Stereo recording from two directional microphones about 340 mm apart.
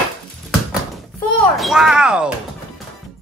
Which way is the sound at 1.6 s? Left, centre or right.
Centre.